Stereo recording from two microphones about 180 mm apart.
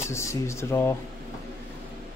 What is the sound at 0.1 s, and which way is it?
Speech, 15° left (ahead or behind).